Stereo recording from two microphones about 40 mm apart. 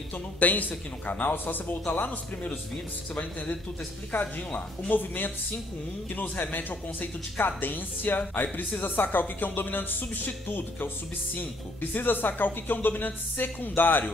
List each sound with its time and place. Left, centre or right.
0.4 s speech: left
3.2 s speech: left
4.9 s speech: left
11.9 s speech: left